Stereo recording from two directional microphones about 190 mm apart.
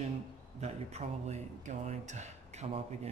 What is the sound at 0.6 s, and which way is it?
Speech, 35° right (ahead or behind).